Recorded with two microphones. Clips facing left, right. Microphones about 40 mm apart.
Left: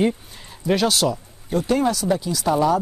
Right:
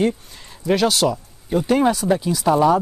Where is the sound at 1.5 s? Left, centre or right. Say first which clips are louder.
Right 3 dB; centre.